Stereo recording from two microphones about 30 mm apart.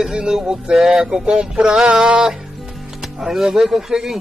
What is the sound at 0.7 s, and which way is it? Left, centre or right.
Music, centre.